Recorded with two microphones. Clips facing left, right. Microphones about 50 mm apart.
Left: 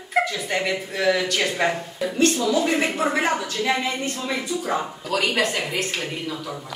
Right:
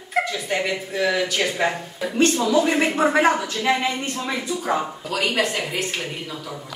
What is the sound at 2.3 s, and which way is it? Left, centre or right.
A woman's voice, right.